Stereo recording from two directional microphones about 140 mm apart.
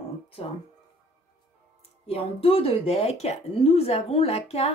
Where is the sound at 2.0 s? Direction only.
45° left (ahead or behind).